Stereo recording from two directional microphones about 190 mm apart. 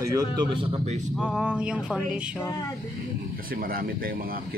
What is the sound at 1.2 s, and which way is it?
Speech, 5° right (ahead or behind).